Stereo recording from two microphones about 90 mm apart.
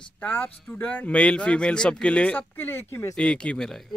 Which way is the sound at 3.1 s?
10° left (ahead or behind).